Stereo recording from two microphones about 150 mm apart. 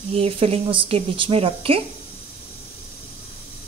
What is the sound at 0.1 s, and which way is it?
A woman's voice, 40° right (ahead or behind).